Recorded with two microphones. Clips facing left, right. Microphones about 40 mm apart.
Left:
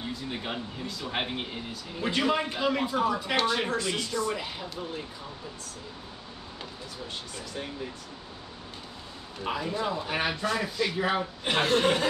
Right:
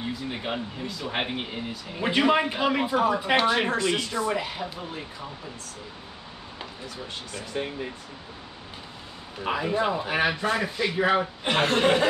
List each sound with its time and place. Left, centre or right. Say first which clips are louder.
0.0 s speech: right 3 dB; centre
4.4 s speech: right 4 dB; centre
7.5 s speech: right 6 dB; right
9.4 s speech: right 5 dB; right